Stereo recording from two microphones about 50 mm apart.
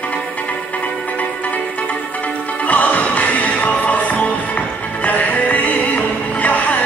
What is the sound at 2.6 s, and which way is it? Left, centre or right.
Music, left.